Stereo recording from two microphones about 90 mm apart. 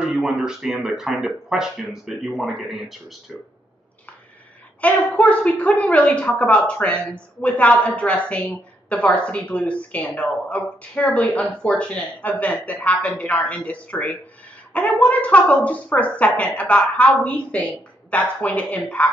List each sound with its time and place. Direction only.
0.0 s speech: 5° right (ahead or behind)
4.8 s a woman's voice: 15° left (ahead or behind)